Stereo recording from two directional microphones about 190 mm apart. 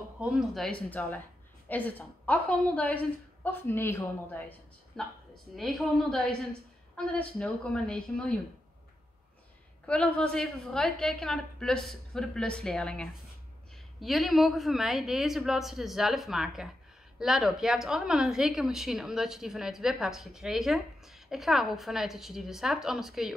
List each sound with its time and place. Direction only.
0.2 s a woman's voice: centre (ahead or behind)
9.8 s speech: 5° left (ahead or behind)